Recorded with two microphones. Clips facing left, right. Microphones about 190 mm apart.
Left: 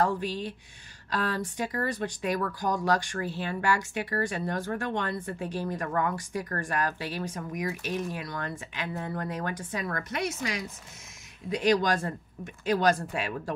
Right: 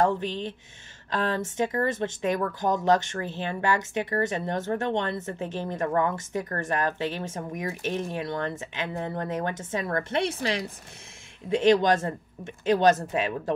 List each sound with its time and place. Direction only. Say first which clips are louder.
0.0 s speech: right 3 dB; 20° right (ahead or behind)